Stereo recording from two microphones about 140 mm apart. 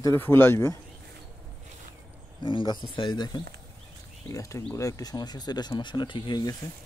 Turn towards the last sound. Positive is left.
turn(degrees=30)  # may be behind; listen again after turning